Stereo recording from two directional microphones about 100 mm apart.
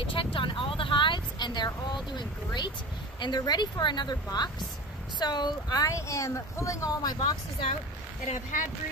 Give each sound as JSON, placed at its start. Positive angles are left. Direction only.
{"t": 0.0, "sound": "vehicle", "side_deg": 60}
{"t": 2.1, "sound": "speech", "side_deg": 50}